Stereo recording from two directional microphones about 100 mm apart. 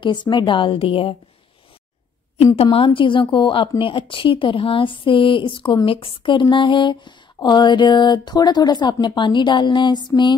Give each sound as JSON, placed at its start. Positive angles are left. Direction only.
{"t": 0.0, "sound": "a woman's voice", "side_deg": 50}
{"t": 2.3, "sound": "a woman's voice", "side_deg": 85}